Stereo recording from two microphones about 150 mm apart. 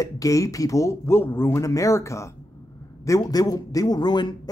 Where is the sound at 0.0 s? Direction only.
20° left (ahead or behind).